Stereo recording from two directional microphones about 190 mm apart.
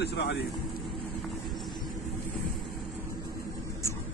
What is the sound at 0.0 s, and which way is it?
Speech, 65° left (ahead or behind).